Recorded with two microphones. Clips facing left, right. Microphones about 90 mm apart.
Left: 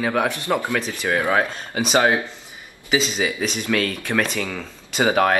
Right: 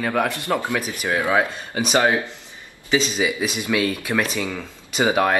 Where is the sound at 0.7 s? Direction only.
15° right (ahead or behind).